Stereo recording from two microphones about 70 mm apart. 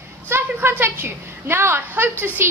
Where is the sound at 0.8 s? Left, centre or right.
Right.